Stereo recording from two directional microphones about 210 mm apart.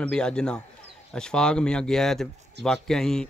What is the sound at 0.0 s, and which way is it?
Speech, 5° left (ahead or behind).